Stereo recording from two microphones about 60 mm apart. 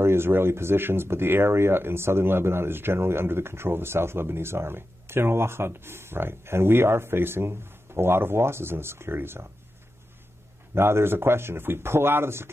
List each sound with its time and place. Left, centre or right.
0.0 s speech: right
10.7 s speech: right